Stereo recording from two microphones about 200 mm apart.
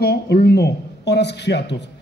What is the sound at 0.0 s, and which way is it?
Speech, 55° left (ahead or behind).